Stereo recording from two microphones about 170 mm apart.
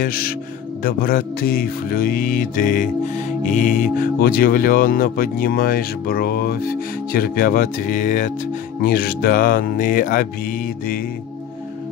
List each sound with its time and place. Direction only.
0.0 s speech: 60° left (ahead or behind)
8.8 s speech: 60° left (ahead or behind)